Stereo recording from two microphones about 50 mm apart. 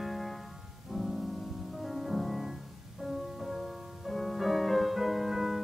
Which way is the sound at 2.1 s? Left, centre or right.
Centre.